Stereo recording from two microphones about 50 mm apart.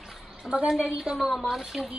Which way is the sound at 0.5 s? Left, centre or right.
Centre.